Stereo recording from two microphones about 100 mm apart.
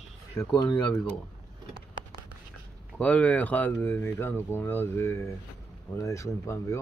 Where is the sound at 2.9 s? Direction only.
15° left (ahead or behind).